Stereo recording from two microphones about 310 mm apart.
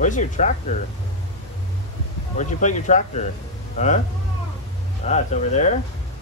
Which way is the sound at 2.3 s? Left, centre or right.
Left.